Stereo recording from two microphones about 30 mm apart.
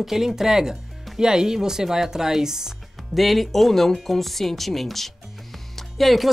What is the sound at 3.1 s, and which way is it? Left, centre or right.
A woman's voice, centre.